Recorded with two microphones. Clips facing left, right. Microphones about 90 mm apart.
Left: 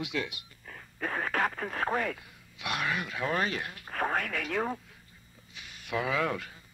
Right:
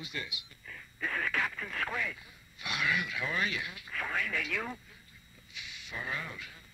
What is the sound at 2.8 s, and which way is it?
Speech, 40° left (ahead or behind).